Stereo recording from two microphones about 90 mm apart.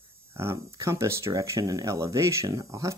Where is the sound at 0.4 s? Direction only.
30° right (ahead or behind).